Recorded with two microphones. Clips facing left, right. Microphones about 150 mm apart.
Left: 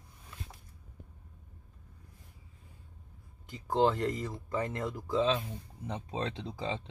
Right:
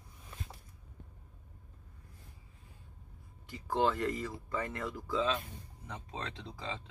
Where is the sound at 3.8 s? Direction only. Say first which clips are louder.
Left 3 dB; 40° left (ahead or behind).